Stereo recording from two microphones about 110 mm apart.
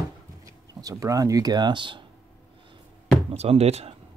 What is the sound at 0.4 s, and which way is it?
Speech, 30° right (ahead or behind).